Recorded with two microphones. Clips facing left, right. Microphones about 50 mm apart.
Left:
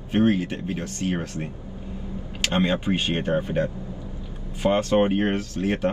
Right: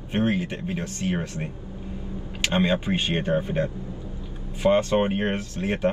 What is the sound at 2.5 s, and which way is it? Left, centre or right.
Speech, right.